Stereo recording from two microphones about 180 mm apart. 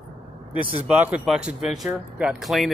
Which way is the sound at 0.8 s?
5° right (ahead or behind).